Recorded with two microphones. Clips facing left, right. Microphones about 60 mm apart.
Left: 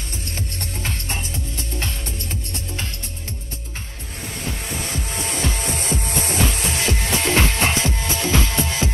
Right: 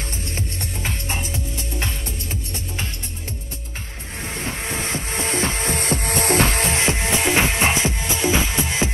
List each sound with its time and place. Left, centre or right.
0.7 s music: centre
4.9 s music: right
6.7 s music: right